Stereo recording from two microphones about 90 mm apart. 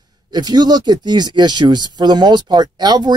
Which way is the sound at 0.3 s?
50° right (ahead or behind).